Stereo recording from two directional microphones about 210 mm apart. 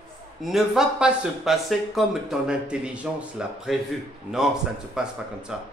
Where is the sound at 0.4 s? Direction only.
Centre (ahead or behind).